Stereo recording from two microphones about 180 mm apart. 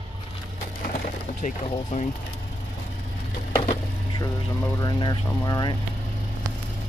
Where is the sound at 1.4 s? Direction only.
45° left (ahead or behind).